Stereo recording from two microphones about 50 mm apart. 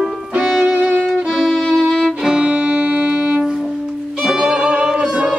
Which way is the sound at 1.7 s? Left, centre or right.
Centre.